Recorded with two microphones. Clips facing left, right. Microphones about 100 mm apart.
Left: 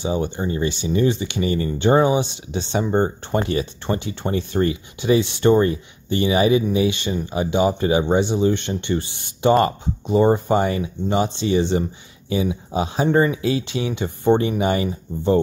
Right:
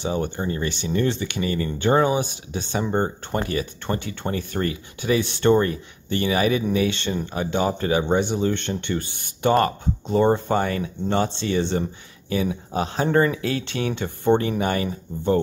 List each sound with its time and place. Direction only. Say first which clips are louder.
0.0 s speech: left 2 dB; 15° left (ahead or behind)